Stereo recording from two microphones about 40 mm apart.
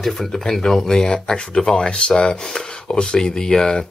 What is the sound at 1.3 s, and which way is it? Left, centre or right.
Speech, left.